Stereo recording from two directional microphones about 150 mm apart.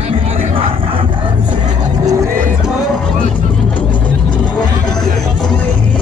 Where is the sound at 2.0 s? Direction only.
25° right (ahead or behind).